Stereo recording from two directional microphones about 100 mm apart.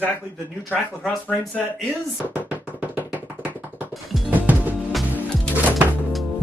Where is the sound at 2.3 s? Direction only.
15° right (ahead or behind).